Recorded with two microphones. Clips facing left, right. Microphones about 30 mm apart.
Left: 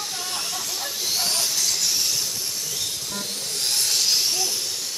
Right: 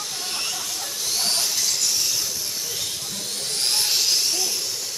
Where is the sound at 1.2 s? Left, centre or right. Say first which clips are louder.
Right 2 dB; centre.